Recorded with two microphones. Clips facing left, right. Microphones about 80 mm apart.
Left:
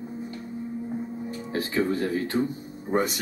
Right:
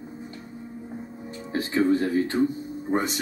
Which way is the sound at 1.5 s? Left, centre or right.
Right.